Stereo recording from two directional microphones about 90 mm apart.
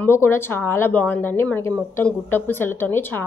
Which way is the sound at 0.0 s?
25° left (ahead or behind).